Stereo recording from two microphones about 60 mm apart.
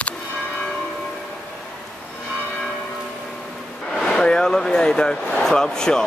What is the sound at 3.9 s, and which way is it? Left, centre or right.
Vehicle, centre.